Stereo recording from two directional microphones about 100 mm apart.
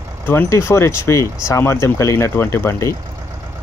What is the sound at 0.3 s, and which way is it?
Speech, 25° left (ahead or behind).